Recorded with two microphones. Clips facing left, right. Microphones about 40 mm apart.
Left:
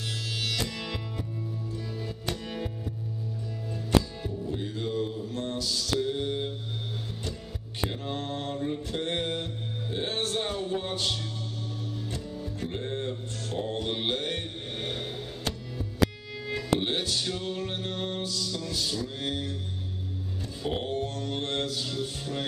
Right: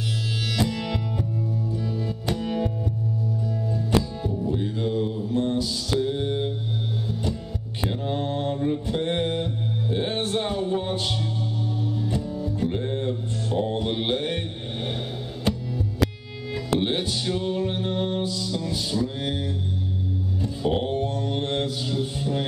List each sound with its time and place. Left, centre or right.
0.6 s music: centre
4.5 s mantra: centre
7.9 s mantra: centre
11.9 s music: centre
16.8 s music: centre
20.4 s mantra: centre